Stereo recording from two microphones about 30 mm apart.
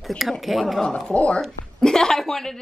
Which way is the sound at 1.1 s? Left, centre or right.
Left.